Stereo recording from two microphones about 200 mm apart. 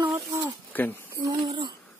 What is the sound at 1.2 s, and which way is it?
Speech, 20° right (ahead or behind).